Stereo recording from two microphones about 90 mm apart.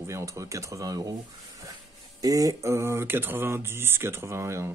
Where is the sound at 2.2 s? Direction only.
40° right (ahead or behind).